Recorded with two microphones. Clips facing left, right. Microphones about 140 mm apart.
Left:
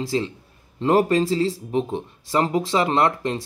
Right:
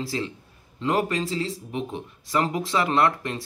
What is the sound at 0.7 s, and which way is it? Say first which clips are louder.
Speech: left 6 dB; 35° left (ahead or behind).